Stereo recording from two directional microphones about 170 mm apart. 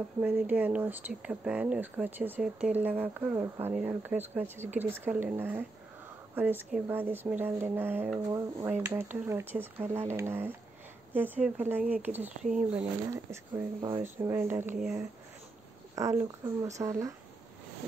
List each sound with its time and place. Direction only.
0.2 s speech: 10° right (ahead or behind)
13.1 s speech: 20° right (ahead or behind)
15.9 s speech: 20° right (ahead or behind)